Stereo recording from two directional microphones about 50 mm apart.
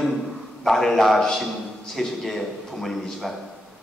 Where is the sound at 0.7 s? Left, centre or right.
Centre.